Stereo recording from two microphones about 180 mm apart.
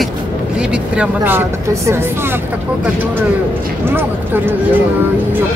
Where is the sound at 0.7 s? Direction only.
10° right (ahead or behind).